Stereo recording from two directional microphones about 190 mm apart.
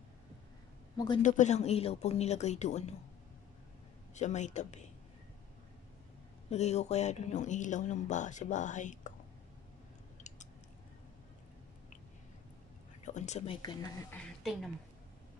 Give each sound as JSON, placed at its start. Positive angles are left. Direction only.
{"t": 0.9, "sound": "a woman's voice", "side_deg": 25}
{"t": 1.2, "sound": "speech", "side_deg": 40}
{"t": 4.1, "sound": "speech", "side_deg": 40}
{"t": 6.5, "sound": "speech", "side_deg": 35}
{"t": 13.0, "sound": "speech", "side_deg": 40}
{"t": 14.1, "sound": "a woman's voice", "side_deg": 5}